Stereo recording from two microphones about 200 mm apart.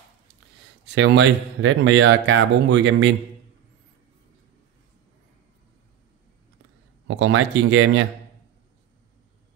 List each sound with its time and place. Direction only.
0.9 s speech: 60° right (ahead or behind)
7.1 s speech: 70° right (ahead or behind)